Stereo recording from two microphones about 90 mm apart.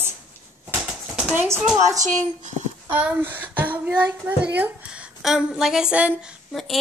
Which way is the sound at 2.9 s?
20° right (ahead or behind).